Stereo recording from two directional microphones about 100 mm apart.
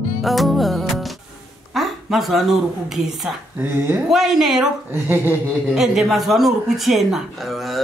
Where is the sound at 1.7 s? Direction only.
Centre (ahead or behind).